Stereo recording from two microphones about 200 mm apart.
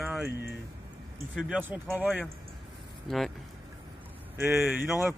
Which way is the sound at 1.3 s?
5° right (ahead or behind).